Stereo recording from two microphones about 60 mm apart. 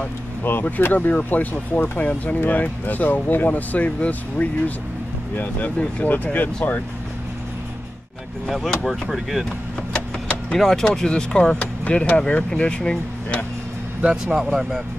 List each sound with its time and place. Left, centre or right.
0.4 s speech: left
8.6 s speech: centre
9.1 s speech: centre
10.6 s speech: centre
14.1 s speech: centre